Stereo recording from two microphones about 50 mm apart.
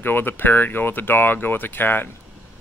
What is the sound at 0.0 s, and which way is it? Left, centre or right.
Speech, left.